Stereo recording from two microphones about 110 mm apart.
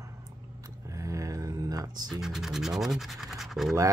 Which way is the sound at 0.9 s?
30° right (ahead or behind).